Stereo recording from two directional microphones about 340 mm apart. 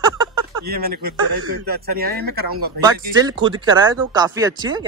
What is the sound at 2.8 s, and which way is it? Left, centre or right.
Speech, centre.